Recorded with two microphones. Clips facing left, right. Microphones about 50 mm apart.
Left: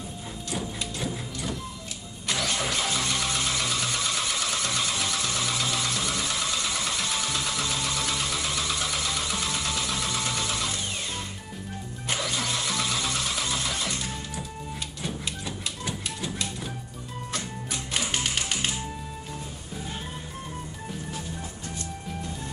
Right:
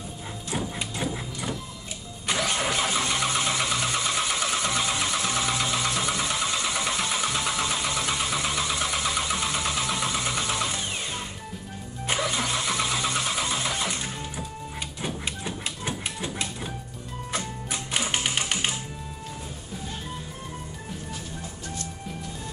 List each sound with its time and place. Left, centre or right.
0.5 s clip-clop: right
2.2 s engine starting: centre
15.0 s a sound: right
17.3 s music: centre